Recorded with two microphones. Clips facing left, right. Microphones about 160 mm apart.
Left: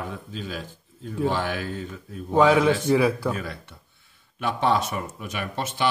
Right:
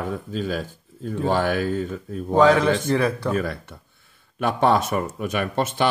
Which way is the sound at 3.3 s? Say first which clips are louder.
Right 8 dB; 50° right (ahead or behind).